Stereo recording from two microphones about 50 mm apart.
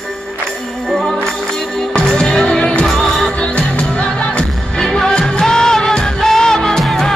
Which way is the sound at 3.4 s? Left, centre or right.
Left.